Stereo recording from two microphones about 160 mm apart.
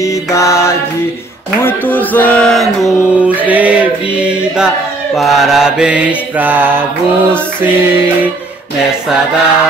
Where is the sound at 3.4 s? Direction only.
10° right (ahead or behind).